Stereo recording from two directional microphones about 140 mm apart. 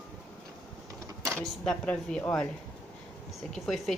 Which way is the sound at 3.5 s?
5° left (ahead or behind).